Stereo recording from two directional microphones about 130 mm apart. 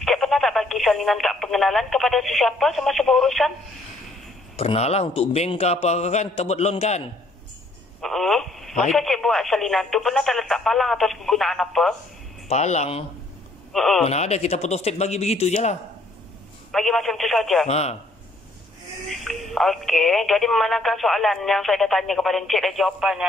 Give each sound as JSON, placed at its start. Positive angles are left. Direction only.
{"t": 0.0, "sound": "speech", "side_deg": 0}
{"t": 4.6, "sound": "a man's voice", "side_deg": 50}
{"t": 8.0, "sound": "telephone", "side_deg": 0}
{"t": 8.9, "sound": "speech", "side_deg": 0}
{"t": 12.4, "sound": "a man's voice", "side_deg": 60}
{"t": 13.7, "sound": "speech", "side_deg": 0}
{"t": 14.0, "sound": "a man's voice", "side_deg": 55}
{"t": 16.7, "sound": "speech", "side_deg": 0}
{"t": 17.6, "sound": "a man's voice", "side_deg": 55}
{"t": 19.2, "sound": "speech", "side_deg": 0}